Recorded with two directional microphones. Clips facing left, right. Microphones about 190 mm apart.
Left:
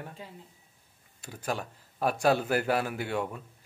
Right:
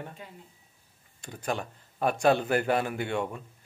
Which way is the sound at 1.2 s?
5° left (ahead or behind).